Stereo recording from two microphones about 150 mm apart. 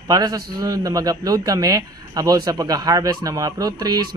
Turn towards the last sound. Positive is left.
turn(degrees=-25)  # may be behind; listen again after turning